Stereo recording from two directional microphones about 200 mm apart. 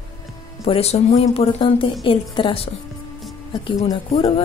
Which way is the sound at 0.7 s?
30° left (ahead or behind).